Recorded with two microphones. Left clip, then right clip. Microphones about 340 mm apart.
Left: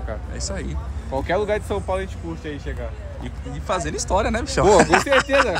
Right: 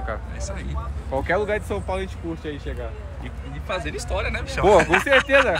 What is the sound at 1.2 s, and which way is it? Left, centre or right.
Speech, centre.